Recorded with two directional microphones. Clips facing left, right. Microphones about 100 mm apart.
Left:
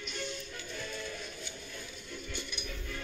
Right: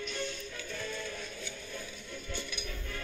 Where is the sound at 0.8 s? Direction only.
40° right (ahead or behind).